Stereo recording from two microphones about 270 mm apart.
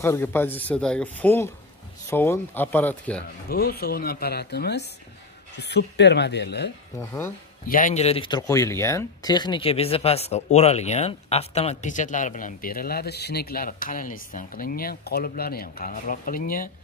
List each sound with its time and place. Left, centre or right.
0.0 s speech: centre
3.4 s speech: left
7.0 s speech: centre
7.6 s speech: left